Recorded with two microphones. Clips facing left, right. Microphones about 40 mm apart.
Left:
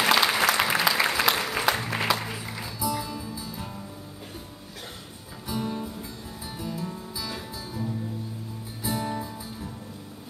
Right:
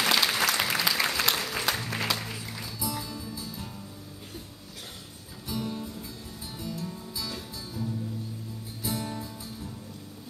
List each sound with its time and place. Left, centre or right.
0.0 s applause: centre
2.8 s music: centre
5.5 s music: centre